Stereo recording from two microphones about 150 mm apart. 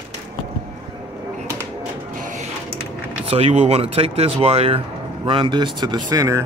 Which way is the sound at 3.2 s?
40° right (ahead or behind).